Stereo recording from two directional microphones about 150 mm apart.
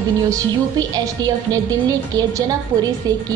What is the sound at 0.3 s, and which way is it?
Speech, 25° right (ahead or behind).